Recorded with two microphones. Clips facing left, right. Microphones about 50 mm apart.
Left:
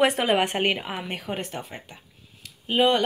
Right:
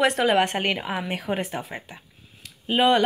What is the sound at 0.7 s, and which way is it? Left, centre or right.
Speech, centre.